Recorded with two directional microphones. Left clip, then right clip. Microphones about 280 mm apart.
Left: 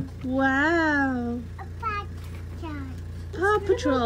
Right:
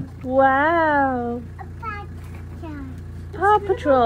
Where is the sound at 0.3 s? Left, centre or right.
Left.